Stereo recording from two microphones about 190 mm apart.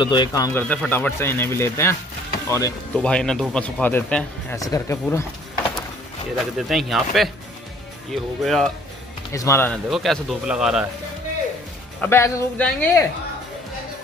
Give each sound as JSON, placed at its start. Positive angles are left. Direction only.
{"t": 0.0, "sound": "speech", "side_deg": 25}
{"t": 6.3, "sound": "speech", "side_deg": 0}
{"t": 9.3, "sound": "speech", "side_deg": 15}
{"t": 9.8, "sound": "speech", "side_deg": 0}
{"t": 12.0, "sound": "speech", "side_deg": 15}